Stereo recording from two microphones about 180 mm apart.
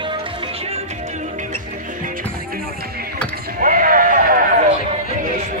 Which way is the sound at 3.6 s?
50° right (ahead or behind).